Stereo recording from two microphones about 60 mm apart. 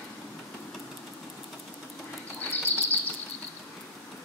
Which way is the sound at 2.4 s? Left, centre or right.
Left.